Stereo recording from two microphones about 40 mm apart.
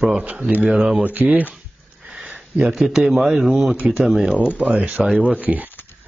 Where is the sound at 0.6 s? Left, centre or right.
Centre.